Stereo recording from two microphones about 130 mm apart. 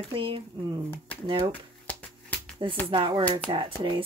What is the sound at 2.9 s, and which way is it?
Speech, 40° right (ahead or behind).